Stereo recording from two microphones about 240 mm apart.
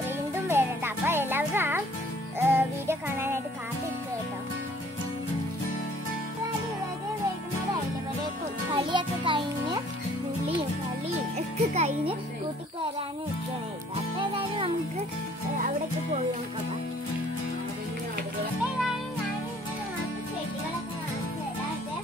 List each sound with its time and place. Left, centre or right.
0.5 s music: centre
8.7 s music: right
11.3 s music: right
14.1 s music: right